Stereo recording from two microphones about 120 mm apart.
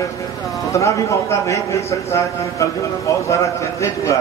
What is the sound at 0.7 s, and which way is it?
A man's voice, 25° left (ahead or behind).